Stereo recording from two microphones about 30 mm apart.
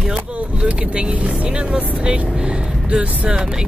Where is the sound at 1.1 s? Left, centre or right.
Right.